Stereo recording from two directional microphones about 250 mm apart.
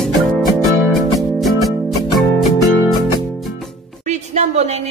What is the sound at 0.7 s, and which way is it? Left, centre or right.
Music, centre.